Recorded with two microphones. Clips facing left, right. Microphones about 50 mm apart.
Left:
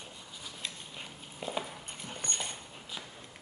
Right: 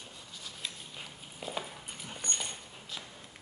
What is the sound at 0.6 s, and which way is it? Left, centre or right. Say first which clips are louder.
Dog: even; centre.